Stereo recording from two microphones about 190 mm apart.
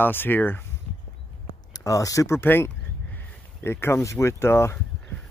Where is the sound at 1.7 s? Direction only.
15° left (ahead or behind).